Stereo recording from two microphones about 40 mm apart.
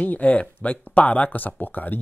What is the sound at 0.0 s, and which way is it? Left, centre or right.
Speech, left.